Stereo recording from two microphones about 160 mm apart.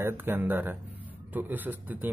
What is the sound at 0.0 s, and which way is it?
Speech, 10° right (ahead or behind).